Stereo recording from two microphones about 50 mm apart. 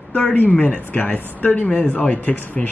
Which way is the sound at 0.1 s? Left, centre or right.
Left.